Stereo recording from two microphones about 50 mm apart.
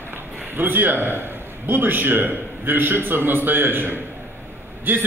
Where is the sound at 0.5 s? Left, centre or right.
Right.